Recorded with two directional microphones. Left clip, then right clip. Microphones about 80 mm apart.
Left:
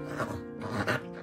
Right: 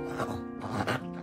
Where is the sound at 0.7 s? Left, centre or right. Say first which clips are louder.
Left 1 dB; centre.